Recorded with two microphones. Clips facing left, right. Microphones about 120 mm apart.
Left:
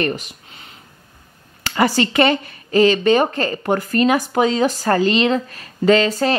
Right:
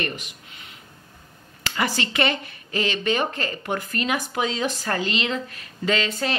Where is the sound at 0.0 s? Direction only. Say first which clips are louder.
Left 8 dB; 35° left (ahead or behind).